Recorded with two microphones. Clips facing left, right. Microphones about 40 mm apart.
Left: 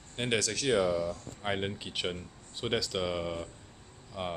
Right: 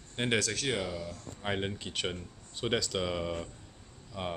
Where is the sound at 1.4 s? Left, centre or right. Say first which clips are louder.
Left 1 dB; centre.